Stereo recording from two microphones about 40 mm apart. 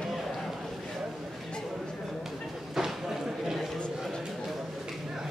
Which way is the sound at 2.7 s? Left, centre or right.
Centre.